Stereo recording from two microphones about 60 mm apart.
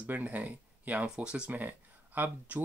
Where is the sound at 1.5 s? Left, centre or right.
Right.